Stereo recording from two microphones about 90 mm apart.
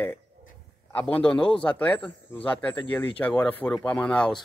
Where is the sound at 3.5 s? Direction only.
20° left (ahead or behind).